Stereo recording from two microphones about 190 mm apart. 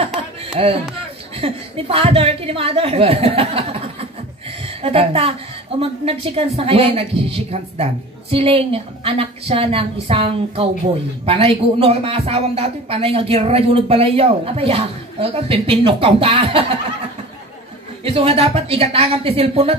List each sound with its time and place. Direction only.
0.0 s music: 30° right (ahead or behind)
1.3 s a woman's voice: 30° right (ahead or behind)
18.0 s a woman's voice: 30° right (ahead or behind)